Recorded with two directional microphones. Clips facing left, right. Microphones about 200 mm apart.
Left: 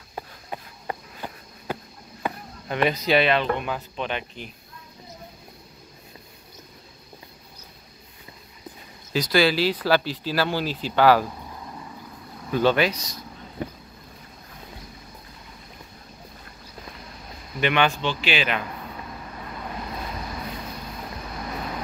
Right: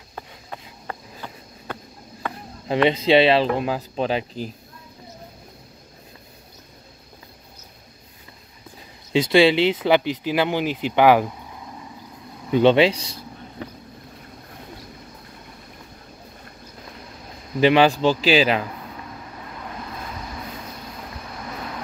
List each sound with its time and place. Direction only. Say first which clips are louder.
0.1 s a sound: left 2 dB; 15° left (ahead or behind)
2.9 s speech: right 5 dB; 25° right (ahead or behind)
9.1 s speech: right 5 dB; 25° right (ahead or behind)
12.4 s speech: right 5 dB; 20° right (ahead or behind)
17.6 s speech: right 7 dB; 30° right (ahead or behind)